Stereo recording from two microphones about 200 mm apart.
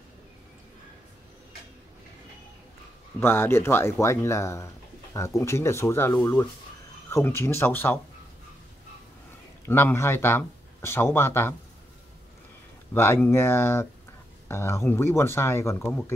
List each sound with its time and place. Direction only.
3.2 s speech: 10° left (ahead or behind)
9.7 s speech: 10° left (ahead or behind)
12.9 s speech: 10° left (ahead or behind)